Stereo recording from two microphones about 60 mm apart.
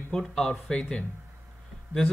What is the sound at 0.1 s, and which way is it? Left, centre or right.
Speech, centre.